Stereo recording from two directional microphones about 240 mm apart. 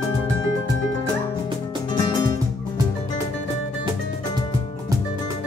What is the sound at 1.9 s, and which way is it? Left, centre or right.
Music, centre.